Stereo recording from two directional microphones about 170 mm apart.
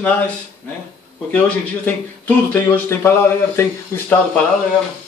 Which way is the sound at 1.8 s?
10° left (ahead or behind).